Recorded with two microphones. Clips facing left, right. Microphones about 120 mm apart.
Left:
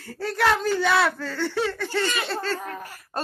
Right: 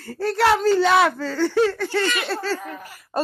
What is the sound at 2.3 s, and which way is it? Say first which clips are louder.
Laughter: right 3 dB; 5° right (ahead or behind).